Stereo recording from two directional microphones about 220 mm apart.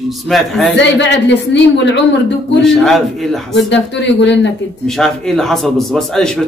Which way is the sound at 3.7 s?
55° left (ahead or behind).